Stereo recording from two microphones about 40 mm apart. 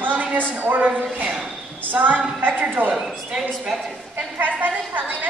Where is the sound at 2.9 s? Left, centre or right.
Centre.